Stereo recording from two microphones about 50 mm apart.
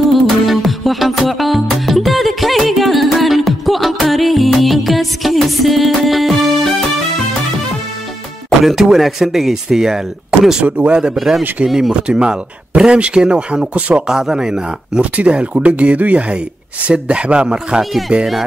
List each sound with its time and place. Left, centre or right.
0.1 s music: centre
8.5 s speech: centre
10.6 s speech: right
11.1 s a man's voice: centre; by 14.0 s right
14.0 s speech: centre
15.0 s speech: right